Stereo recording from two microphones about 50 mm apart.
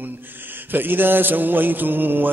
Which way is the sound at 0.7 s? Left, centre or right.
Right.